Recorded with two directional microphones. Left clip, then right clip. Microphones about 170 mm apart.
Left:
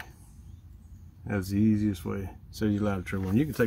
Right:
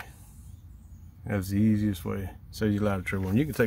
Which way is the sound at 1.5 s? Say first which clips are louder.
Left 1 dB; 15° right (ahead or behind).